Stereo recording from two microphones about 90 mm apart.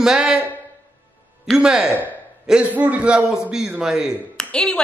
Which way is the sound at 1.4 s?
5° right (ahead or behind).